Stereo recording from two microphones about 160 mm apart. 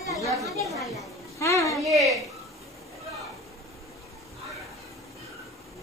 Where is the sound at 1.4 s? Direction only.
20° left (ahead or behind).